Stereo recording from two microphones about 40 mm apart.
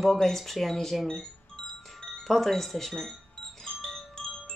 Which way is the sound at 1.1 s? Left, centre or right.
Centre.